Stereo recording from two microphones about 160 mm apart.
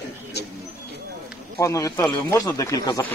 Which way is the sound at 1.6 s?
20° left (ahead or behind).